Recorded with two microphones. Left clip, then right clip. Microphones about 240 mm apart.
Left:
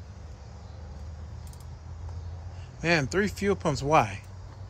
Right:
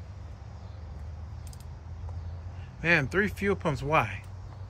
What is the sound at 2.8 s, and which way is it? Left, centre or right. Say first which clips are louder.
Speech: right 1 dB; centre.